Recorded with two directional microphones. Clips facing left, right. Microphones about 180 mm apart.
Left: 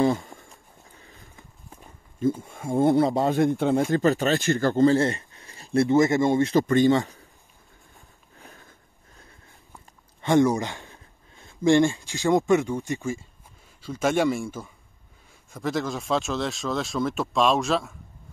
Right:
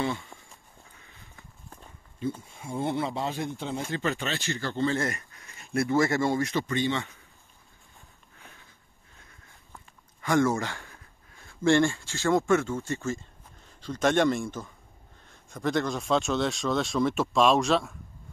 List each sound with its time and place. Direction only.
0.0 s a sound: 40° left (ahead or behind)
0.9 s livestock: 35° left (ahead or behind)
2.1 s speech: 50° left (ahead or behind)
4.0 s speech: 40° left (ahead or behind)
5.9 s speech: 20° left (ahead or behind)
6.5 s speech: 45° left (ahead or behind)
8.4 s a sound: 35° left (ahead or behind)
10.2 s speech: 20° left (ahead or behind); by 17.9 s centre (ahead or behind)